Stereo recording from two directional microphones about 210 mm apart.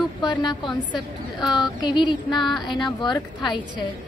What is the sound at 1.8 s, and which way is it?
Speech, 20° left (ahead or behind).